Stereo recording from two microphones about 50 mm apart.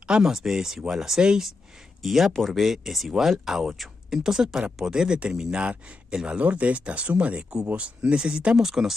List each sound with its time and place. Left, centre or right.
0.1 s speech: centre
6.4 s speech: right
8.5 s speech: centre